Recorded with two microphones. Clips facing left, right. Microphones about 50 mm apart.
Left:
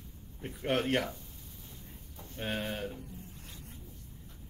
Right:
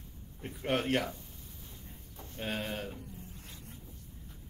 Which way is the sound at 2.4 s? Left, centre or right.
Centre.